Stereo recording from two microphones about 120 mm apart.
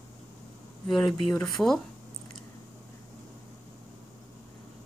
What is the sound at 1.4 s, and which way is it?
Speech, 5° left (ahead or behind).